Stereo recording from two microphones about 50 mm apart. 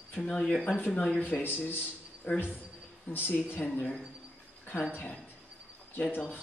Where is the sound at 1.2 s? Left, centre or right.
Left.